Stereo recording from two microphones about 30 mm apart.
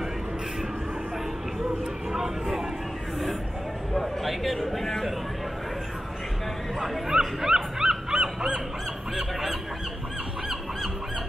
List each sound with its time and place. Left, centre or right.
2.1 s speech: centre
4.0 s a man's voice: centre
7.1 s goose: centre
9.1 s goose: centre